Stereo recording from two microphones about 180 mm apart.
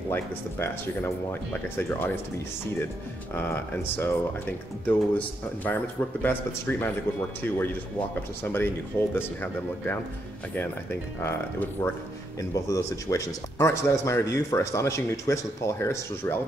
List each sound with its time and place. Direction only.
0.1 s a man's voice: 15° left (ahead or behind)
3.3 s a man's voice: 10° left (ahead or behind)